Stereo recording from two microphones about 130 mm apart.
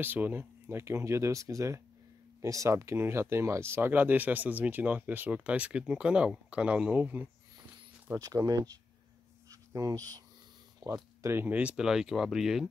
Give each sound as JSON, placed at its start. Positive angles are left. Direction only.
{"t": 0.0, "sound": "speech", "side_deg": -15}
{"t": 8.1, "sound": "speech", "side_deg": -25}